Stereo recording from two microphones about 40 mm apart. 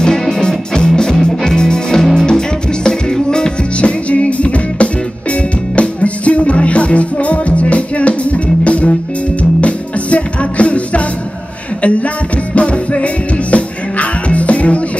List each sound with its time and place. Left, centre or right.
0.0 s music: centre
3.8 s music: left